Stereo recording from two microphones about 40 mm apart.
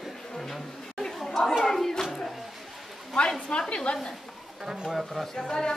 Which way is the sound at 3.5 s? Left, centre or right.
Left.